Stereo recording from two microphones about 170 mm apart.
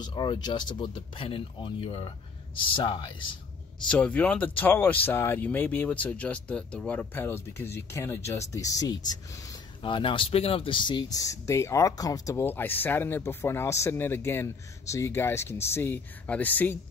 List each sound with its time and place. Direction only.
0.0 s speech: 25° left (ahead or behind)
3.8 s speech: 10° left (ahead or behind)